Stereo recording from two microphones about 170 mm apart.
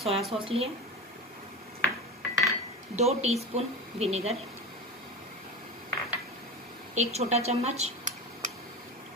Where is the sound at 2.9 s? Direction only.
40° right (ahead or behind).